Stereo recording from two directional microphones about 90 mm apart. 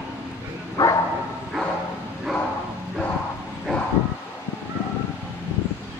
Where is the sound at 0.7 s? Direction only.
40° left (ahead or behind).